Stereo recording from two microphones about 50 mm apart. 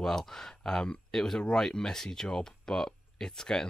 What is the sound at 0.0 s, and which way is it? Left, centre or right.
Speech, centre.